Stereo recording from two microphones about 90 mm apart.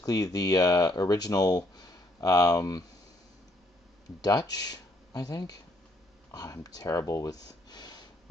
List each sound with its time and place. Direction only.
0.0 s speech: 45° left (ahead or behind)
4.2 s speech: 45° left (ahead or behind)